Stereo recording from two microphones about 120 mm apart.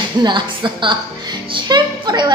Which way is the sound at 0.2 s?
40° right (ahead or behind).